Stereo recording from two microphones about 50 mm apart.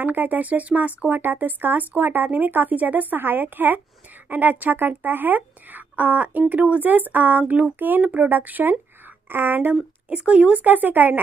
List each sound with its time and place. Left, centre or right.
0.0 s speech: right
10.0 s speech: right
10.6 s speech: right